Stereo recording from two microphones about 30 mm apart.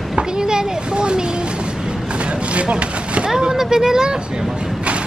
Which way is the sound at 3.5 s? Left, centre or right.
Centre.